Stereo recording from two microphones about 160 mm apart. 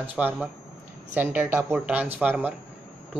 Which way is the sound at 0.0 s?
10° right (ahead or behind).